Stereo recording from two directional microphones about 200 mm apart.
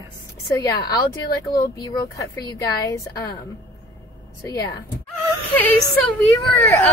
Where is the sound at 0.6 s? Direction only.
20° left (ahead or behind).